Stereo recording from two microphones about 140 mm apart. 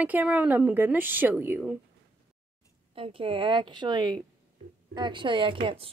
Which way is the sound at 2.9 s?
40° right (ahead or behind).